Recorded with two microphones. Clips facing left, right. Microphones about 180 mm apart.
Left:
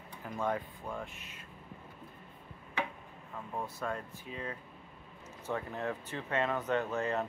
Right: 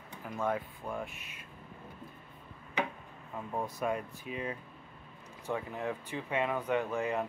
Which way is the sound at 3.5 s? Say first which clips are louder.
Right 4 dB; 15° right (ahead or behind).